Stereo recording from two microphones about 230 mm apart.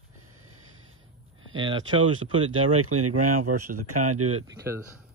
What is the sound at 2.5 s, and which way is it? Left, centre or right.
Speech, right.